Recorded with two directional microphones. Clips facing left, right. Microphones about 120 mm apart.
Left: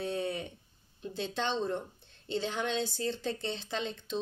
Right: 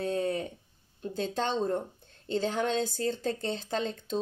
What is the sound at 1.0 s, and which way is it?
A woman's voice, 45° right (ahead or behind).